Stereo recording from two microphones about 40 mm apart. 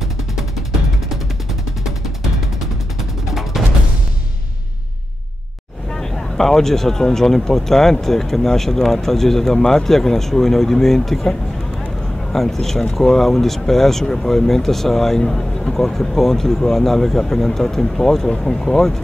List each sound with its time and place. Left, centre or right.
0.4 s music: centre
2.6 s gunshot: centre
5.9 s speech: centre